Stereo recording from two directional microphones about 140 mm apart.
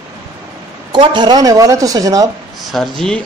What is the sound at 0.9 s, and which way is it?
Speech, 35° right (ahead or behind).